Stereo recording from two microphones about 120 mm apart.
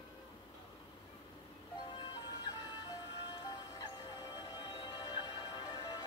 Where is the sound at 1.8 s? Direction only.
40° left (ahead or behind).